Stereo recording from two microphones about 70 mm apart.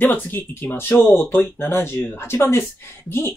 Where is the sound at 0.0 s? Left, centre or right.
Left.